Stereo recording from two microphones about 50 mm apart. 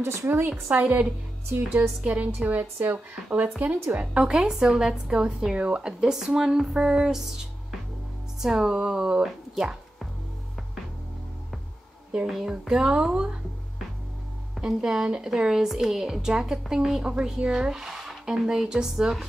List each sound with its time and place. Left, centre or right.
0.0 s a woman's voice: right
4.0 s a woman's voice: centre
8.4 s a woman's voice: centre
12.3 s a woman's voice: centre
14.8 s a woman's voice: centre